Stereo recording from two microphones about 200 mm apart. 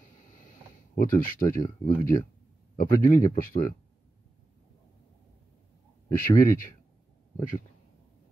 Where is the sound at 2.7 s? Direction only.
45° left (ahead or behind).